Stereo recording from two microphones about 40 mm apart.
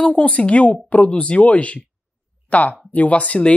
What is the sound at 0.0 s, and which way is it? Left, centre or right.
Speech, left.